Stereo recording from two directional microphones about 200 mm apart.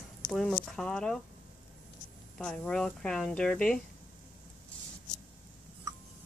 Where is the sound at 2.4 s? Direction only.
5° left (ahead or behind).